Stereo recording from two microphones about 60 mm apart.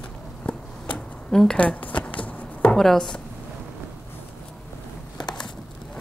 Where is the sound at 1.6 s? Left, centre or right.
Left.